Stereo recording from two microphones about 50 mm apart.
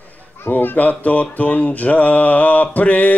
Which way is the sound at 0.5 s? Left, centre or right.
Left.